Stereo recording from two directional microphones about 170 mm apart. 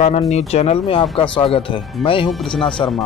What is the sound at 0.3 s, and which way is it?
Speech, 40° left (ahead or behind).